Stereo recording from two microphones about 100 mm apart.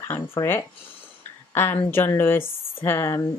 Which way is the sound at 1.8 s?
25° left (ahead or behind).